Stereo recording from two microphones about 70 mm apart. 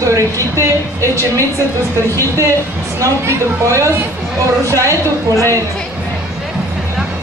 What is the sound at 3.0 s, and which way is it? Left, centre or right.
A woman's voice, right.